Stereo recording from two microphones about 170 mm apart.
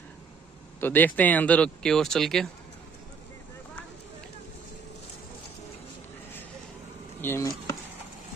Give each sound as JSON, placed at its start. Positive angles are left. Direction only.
{"t": 0.7, "sound": "speech", "side_deg": 10}
{"t": 7.2, "sound": "speech", "side_deg": 10}